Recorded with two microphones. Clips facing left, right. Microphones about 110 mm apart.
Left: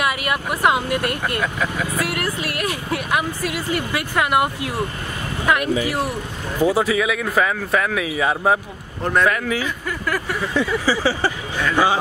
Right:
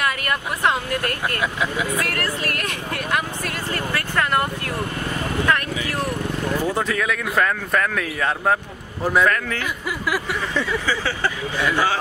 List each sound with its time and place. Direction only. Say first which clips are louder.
0.0 s speech: left 2 dB; 10° left (ahead or behind)
1.4 s speech: even; 5° right (ahead or behind)
2.0 s speech: left 2 dB; 10° left (ahead or behind)
6.6 s speech: left 10 dB; 5° left (ahead or behind)
9.0 s speech: even; 5° right (ahead or behind)
9.3 s speech: left 2 dB; 10° left (ahead or behind)